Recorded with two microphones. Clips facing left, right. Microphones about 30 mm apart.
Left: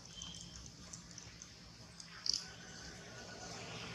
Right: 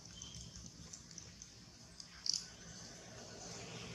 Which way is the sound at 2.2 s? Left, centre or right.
Left.